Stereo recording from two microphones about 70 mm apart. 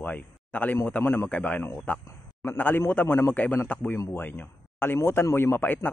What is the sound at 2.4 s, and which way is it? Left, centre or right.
Speech, left.